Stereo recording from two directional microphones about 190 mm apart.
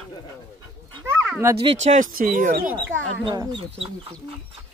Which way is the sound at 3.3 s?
25° right (ahead or behind).